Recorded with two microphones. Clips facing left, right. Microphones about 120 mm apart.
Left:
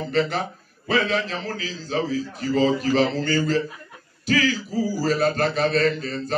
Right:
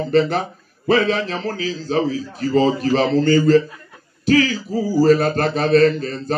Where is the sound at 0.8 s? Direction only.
40° right (ahead or behind).